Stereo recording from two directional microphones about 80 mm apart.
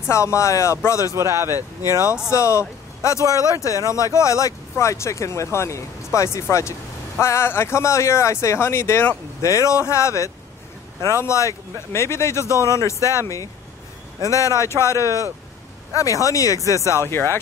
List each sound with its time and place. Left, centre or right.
0.1 s speech: left
1.1 s speech: right
2.2 s a man's voice: left
16.9 s speech: left